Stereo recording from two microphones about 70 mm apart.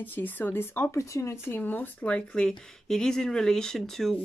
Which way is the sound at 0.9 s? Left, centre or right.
Left.